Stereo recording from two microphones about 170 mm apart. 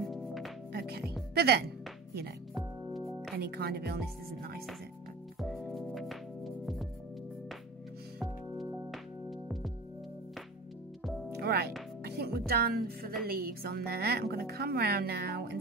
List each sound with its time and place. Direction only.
0.1 s music: centre (ahead or behind)
0.7 s music: 65° right (ahead or behind)
1.3 s a woman's voice: 70° right (ahead or behind)
3.3 s a woman's voice: 70° right (ahead or behind)
5.4 s music: centre (ahead or behind)
8.6 s music: 5° right (ahead or behind)
11.3 s music: 70° right (ahead or behind)
13.3 s a woman's voice: 65° right (ahead or behind)